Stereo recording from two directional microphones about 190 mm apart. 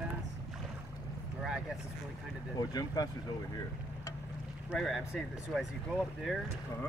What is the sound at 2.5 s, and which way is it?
Speech, 20° left (ahead or behind).